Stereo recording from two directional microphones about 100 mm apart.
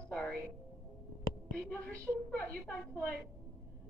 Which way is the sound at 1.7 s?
15° left (ahead or behind).